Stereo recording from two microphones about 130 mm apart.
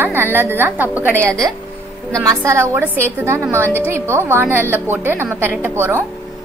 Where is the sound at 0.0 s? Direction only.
15° right (ahead or behind).